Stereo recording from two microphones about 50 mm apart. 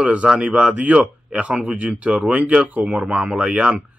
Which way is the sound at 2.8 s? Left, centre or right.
Centre.